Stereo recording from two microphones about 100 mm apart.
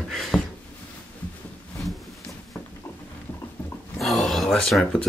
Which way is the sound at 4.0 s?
Centre (ahead or behind).